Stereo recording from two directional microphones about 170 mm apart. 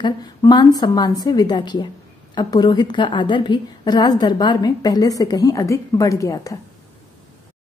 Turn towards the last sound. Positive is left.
turn(degrees=20)  # may be behind; listen again after turning